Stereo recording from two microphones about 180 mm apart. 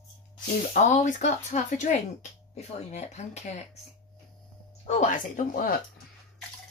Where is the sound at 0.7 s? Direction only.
40° left (ahead or behind).